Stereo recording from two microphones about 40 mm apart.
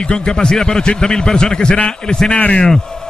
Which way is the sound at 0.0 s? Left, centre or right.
Left.